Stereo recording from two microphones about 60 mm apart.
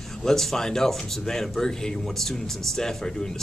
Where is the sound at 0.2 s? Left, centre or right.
Centre.